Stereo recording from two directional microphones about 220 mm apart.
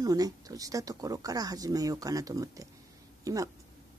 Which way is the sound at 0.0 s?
15° right (ahead or behind).